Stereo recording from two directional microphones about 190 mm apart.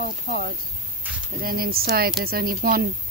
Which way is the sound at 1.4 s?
50° right (ahead or behind).